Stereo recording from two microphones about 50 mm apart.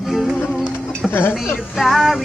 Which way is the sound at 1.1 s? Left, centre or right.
Left.